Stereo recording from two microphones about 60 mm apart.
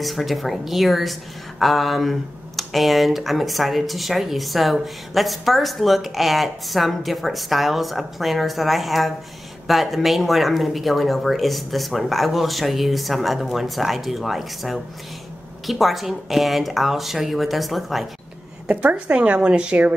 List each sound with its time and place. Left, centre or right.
0.0 s speech: centre
18.7 s a woman's voice: right